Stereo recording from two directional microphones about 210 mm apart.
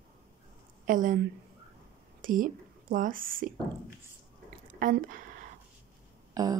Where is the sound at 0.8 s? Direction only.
40° right (ahead or behind).